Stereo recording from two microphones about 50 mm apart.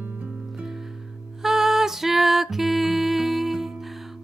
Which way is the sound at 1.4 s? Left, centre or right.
Centre.